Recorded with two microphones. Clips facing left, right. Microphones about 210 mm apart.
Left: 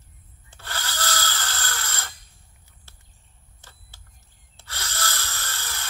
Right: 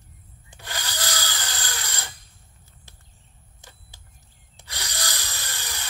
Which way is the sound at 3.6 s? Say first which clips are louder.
Right 2 dB; 15° right (ahead or behind).